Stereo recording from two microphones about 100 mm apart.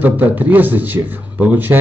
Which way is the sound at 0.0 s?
15° right (ahead or behind).